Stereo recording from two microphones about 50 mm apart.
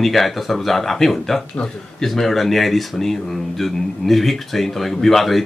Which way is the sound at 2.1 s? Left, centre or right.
Centre.